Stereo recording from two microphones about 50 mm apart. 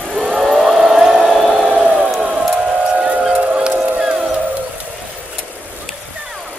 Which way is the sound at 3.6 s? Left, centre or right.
Centre.